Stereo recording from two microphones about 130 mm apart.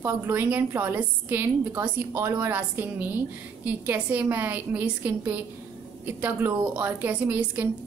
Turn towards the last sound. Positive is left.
turn(degrees=-15)  # may be behind; listen again after turning